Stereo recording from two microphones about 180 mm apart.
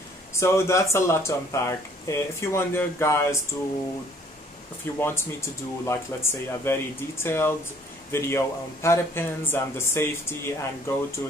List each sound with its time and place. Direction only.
0.3 s speech: 15° left (ahead or behind)
4.9 s speech: 15° left (ahead or behind)